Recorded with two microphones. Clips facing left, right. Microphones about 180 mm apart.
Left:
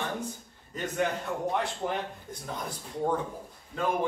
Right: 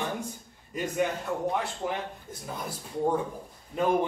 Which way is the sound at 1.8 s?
5° right (ahead or behind).